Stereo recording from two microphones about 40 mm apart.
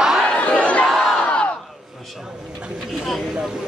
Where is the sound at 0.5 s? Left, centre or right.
Left.